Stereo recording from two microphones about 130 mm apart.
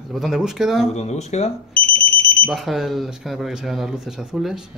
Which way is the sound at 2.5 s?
Centre (ahead or behind).